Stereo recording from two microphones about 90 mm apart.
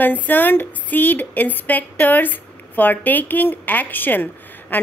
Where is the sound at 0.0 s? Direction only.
20° left (ahead or behind).